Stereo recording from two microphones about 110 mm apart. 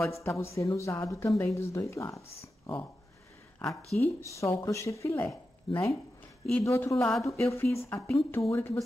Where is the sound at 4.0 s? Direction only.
30° left (ahead or behind).